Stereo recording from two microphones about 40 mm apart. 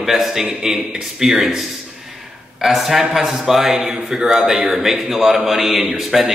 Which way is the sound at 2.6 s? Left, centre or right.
Centre.